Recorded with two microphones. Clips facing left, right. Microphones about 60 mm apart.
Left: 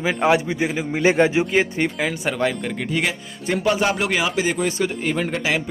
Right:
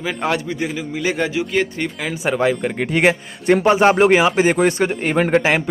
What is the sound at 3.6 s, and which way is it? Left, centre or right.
Speech, right.